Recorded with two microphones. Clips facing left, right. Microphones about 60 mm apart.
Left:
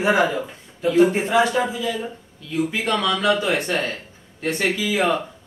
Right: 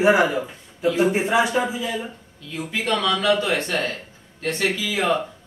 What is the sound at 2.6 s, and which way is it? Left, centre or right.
Speech, centre.